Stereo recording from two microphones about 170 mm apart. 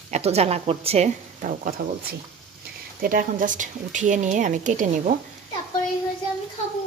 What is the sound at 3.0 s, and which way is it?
Speech, 55° right (ahead or behind).